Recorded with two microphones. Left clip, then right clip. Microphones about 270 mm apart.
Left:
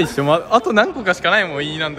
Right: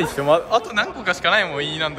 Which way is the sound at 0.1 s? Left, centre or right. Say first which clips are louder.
Right 1 dB; left.